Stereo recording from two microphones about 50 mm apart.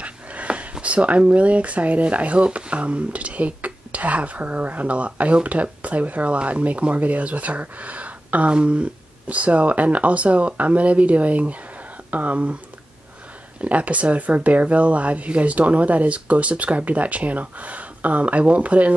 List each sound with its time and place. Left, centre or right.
0.0 s a sound: right
0.7 s speech: right
13.6 s speech: right